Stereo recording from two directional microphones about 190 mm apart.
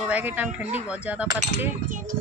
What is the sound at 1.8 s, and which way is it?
Speech, 45° right (ahead or behind).